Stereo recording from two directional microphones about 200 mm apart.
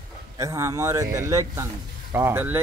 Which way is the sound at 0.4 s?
15° right (ahead or behind).